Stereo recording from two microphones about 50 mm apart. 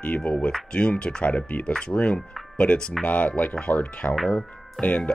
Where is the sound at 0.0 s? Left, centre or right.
Left.